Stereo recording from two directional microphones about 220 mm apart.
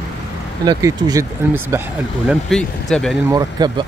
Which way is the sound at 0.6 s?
15° right (ahead or behind).